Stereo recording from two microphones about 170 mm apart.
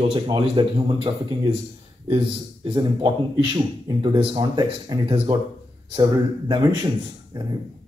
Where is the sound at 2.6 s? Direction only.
25° right (ahead or behind).